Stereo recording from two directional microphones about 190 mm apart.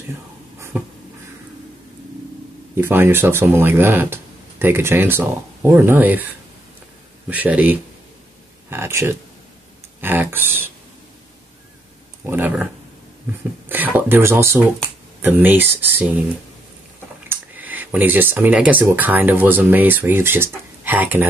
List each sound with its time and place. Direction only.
0.7 s a sound: 10° right (ahead or behind)
2.7 s speech: 10° right (ahead or behind)
7.2 s speech: 10° right (ahead or behind)
12.3 s speech: 10° right (ahead or behind)
13.7 s speech: 10° right (ahead or behind)
17.3 s speech: 10° right (ahead or behind)